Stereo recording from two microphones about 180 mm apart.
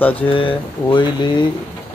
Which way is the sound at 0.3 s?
30° left (ahead or behind).